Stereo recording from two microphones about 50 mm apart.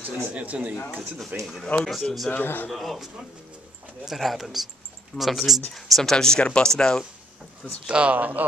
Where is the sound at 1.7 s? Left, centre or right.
Left.